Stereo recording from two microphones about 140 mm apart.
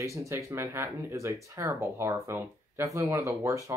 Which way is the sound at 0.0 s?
20° right (ahead or behind).